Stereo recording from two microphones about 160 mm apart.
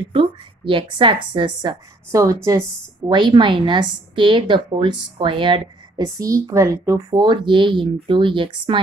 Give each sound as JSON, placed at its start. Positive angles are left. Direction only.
{"t": 0.1, "sound": "a woman's voice", "side_deg": -35}
{"t": 6.0, "sound": "speech", "side_deg": -20}